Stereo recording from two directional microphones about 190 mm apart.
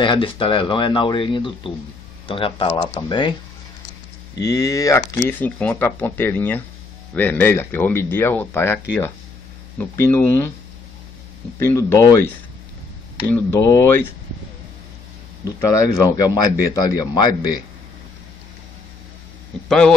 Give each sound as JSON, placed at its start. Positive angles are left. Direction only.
{"t": 0.0, "sound": "speech", "side_deg": 25}
{"t": 4.4, "sound": "speech", "side_deg": 20}
{"t": 11.6, "sound": "speech", "side_deg": 15}
{"t": 13.3, "sound": "speech", "side_deg": 10}
{"t": 15.4, "sound": "speech", "side_deg": 20}